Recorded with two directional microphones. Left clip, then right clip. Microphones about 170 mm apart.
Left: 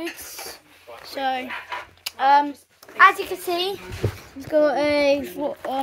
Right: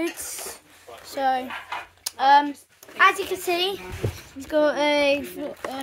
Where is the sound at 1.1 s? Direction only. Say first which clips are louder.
Right 2 dB; 10° right (ahead or behind).